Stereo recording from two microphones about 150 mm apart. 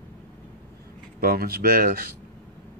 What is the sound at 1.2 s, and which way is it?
Speech, 80° right.